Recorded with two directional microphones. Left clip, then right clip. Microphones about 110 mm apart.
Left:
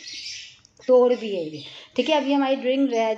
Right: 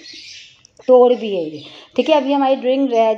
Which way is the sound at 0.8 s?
40° right (ahead or behind).